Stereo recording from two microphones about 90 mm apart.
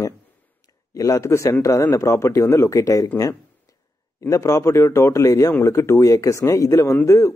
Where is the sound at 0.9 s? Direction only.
35° left (ahead or behind).